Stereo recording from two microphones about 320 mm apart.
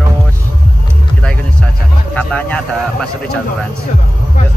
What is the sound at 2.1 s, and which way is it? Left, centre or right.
Vehicle, centre.